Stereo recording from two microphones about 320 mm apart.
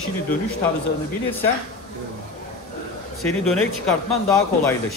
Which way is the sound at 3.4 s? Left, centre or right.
Centre.